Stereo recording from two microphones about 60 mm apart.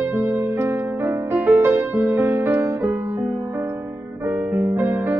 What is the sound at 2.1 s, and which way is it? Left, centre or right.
Music, right.